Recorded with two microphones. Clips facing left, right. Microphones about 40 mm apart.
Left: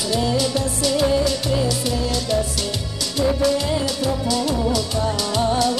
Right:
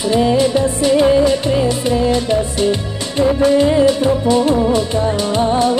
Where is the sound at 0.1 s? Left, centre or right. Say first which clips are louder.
Right 8 dB; right.